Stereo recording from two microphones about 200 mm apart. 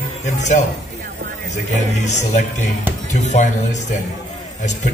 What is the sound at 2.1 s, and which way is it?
Speech, 35° left (ahead or behind).